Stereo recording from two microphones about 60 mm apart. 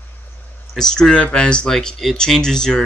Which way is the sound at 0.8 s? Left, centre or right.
Centre.